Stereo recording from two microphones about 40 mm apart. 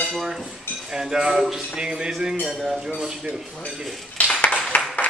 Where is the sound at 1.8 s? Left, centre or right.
Centre.